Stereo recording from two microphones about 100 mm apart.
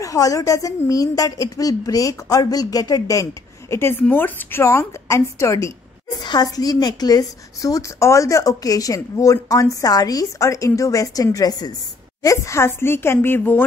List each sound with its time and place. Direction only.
0.0 s a woman's voice: 35° left (ahead or behind)
4.0 s a woman's voice: 20° left (ahead or behind)
6.2 s a woman's voice: 40° left (ahead or behind); by 13.7 s 20° left (ahead or behind)